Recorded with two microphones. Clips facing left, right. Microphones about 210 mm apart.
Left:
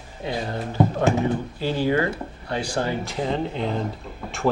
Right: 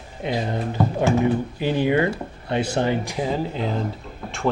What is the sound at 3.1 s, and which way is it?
Speech, 5° right (ahead or behind).